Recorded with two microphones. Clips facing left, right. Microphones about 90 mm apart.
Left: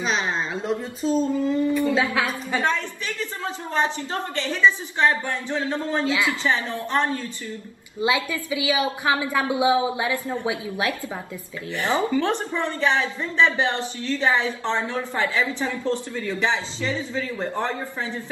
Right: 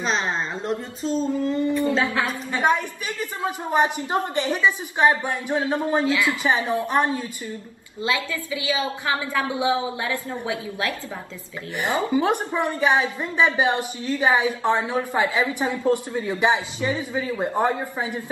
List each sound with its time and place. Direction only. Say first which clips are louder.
0.0 s speech: even; centre (ahead or behind)
2.6 s a woman's voice: right 7 dB; 15° right (ahead or behind)
6.0 s a woman's voice: right 1 dB; 20° left (ahead or behind)
6.4 s a woman's voice: right 3 dB; 15° right (ahead or behind)
8.0 s a woman's voice: left 2 dB; 20° left (ahead or behind)
11.8 s a woman's voice: even; 15° right (ahead or behind)